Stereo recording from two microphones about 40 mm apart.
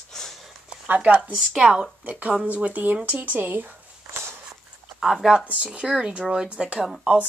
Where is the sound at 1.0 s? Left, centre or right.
Right.